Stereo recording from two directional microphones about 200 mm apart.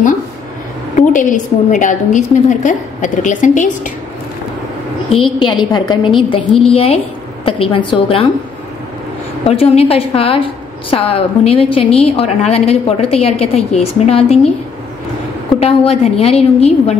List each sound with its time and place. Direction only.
0.9 s a woman's voice: 40° left (ahead or behind)
5.1 s a woman's voice: 25° left (ahead or behind)
9.5 s a woman's voice: 30° left (ahead or behind)
15.6 s a woman's voice: 30° left (ahead or behind)